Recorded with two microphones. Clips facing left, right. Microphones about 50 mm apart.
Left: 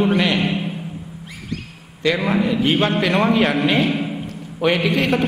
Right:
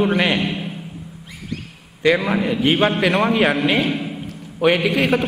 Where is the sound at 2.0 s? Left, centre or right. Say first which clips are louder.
Right 1 dB; centre.